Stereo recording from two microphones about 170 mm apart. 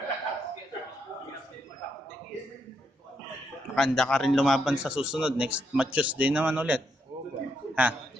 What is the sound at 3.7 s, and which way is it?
A man's voice, centre (ahead or behind).